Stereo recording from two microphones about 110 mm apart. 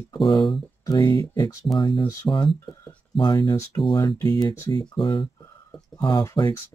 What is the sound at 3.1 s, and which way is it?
Speech, 45° left (ahead or behind).